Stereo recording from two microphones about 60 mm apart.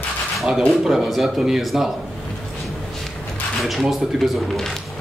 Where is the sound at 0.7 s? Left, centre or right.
Centre.